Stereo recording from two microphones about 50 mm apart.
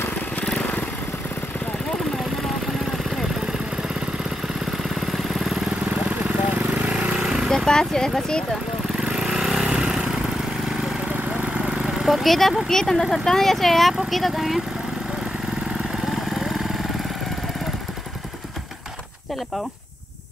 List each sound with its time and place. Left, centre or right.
0.5 s motorcycle: centre
4.8 s vehicle: centre
7.0 s a sound: right
7.4 s speech: centre
9.1 s vehicle: centre
11.5 s a sound: centre
12.1 s speech: centre